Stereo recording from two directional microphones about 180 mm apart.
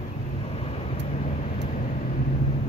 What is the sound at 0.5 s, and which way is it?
Vehicle, 35° left (ahead or behind).